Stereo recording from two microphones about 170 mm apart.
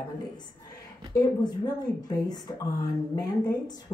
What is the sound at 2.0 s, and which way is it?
Speech, 25° left (ahead or behind).